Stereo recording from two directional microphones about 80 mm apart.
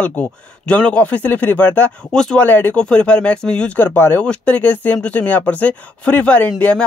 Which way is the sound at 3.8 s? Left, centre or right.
Left.